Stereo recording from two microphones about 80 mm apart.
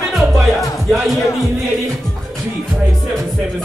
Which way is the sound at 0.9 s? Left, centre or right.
Centre.